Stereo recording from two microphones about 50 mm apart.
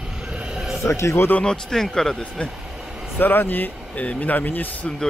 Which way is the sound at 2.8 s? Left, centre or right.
Centre.